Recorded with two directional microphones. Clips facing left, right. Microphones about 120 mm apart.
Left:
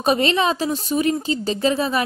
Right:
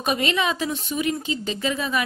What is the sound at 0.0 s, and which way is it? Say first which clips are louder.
Speech: left 5 dB; 35° left (ahead or behind).